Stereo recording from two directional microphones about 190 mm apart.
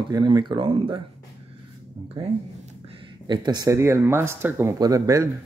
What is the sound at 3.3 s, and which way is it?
Speech, 25° right (ahead or behind).